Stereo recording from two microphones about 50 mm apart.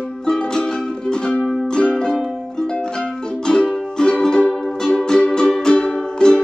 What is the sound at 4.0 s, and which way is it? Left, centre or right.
Music, centre.